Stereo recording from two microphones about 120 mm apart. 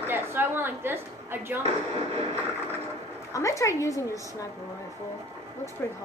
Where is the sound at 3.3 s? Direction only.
25° left (ahead or behind).